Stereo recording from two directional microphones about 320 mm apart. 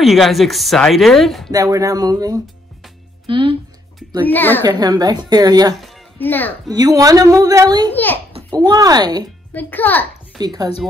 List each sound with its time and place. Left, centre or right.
0.0 s speech: centre
1.5 s a woman's voice: centre
4.2 s speech: centre
4.6 s a woman's voice: centre
5.8 s music: centre
6.7 s a woman's voice: centre
7.9 s speech: centre
8.3 s speech: centre
9.5 s a child's voice: centre
10.4 s a woman's voice: centre